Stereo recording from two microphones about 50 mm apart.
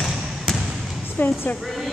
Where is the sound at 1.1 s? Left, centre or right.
Left.